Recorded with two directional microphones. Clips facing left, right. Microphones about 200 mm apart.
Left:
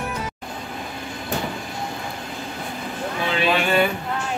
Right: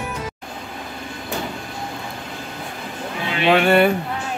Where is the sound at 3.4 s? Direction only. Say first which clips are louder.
Right 6 dB; 60° right (ahead or behind).